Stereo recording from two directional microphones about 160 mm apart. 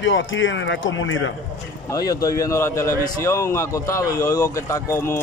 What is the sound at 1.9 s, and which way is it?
A man's voice, 20° left (ahead or behind).